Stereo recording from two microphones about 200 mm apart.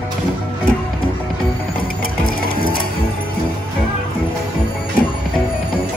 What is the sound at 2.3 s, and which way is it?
Music, 45° left (ahead or behind).